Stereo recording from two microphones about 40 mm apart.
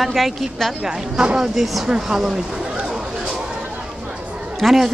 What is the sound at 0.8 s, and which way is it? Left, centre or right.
Speech, centre.